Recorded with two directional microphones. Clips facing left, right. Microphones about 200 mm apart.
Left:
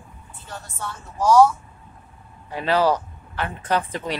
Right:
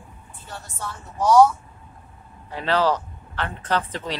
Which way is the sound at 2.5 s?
10° left (ahead or behind).